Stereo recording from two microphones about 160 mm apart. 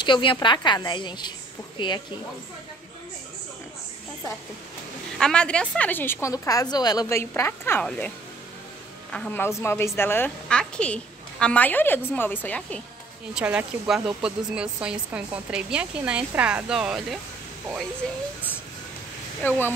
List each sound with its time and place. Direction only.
0.0 s a woman's voice: 30° left (ahead or behind)
5.2 s a woman's voice: 5° left (ahead or behind)
9.1 s a woman's voice: 10° left (ahead or behind)
13.3 s speech: 5° right (ahead or behind)
19.4 s a woman's voice: 15° left (ahead or behind)